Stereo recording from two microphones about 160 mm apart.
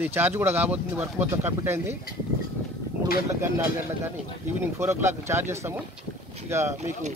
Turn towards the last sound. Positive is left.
turn(degrees=-15)  # may be behind; listen again after turning